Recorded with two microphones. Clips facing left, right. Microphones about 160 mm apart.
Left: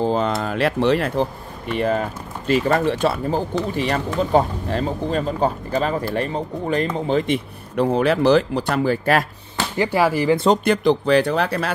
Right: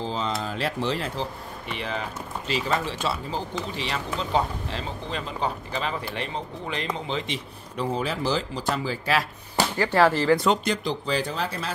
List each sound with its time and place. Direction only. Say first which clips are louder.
0.0 s speech: left 8 dB; 55° left (ahead or behind)
9.8 s speech: left 3 dB; 10° left (ahead or behind)
10.6 s speech: left 10 dB; 60° left (ahead or behind)